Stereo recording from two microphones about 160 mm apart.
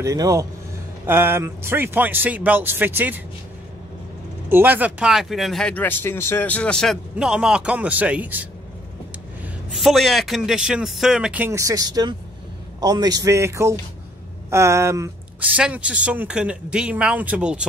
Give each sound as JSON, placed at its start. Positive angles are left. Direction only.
{"t": 0.0, "sound": "a man's voice", "side_deg": -20}
{"t": 4.5, "sound": "speech", "side_deg": -15}
{"t": 9.8, "sound": "a man's voice", "side_deg": 0}